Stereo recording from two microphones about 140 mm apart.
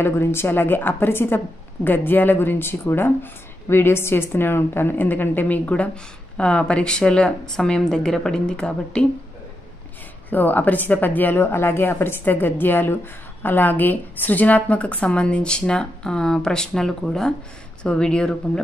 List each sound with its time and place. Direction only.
0.0 s speech: 15° left (ahead or behind)
10.3 s speech: 10° left (ahead or behind)